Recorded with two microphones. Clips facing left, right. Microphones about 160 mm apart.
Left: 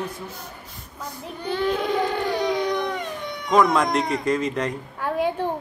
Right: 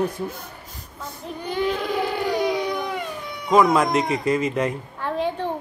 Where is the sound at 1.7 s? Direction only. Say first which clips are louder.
Left 1 dB; 10° right (ahead or behind).